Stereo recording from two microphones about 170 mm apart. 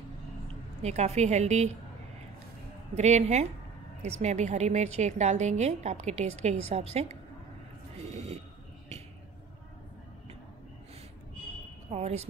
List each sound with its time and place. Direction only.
0.8 s a woman's voice: 40° right (ahead or behind)
3.0 s a woman's voice: 40° right (ahead or behind)
8.1 s a sound: 40° right (ahead or behind)
11.9 s speech: 40° right (ahead or behind)